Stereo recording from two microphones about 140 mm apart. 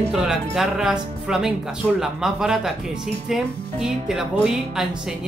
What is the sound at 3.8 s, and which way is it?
Speech, 5° right (ahead or behind).